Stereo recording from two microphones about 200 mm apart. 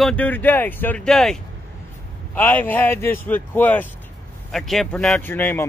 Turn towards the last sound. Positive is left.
turn(degrees=10)  # may be behind; listen again after turning